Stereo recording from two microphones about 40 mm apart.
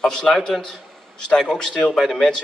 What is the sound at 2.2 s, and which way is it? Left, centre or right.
Speech, centre.